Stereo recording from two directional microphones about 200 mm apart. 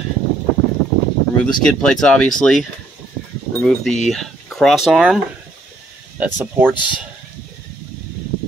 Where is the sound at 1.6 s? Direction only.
Centre (ahead or behind).